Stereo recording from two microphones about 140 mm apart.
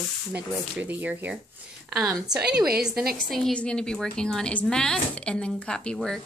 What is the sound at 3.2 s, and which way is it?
A woman's voice, centre (ahead or behind).